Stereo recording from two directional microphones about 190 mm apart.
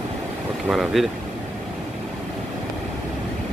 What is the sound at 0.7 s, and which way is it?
Speech, centre (ahead or behind).